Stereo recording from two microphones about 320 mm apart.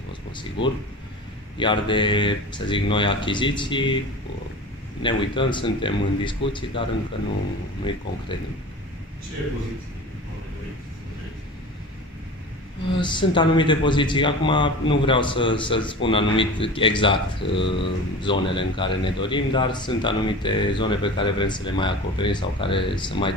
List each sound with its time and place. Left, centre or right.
0.6 s speech: centre
5.0 s speech: centre
12.9 s speech: centre